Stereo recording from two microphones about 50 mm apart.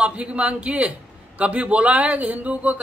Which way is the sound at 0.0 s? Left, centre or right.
Right.